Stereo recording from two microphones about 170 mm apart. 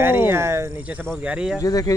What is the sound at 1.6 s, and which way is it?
Speech, 20° left (ahead or behind).